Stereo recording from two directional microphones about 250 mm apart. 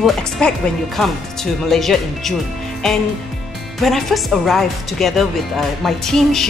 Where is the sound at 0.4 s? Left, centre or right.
Centre.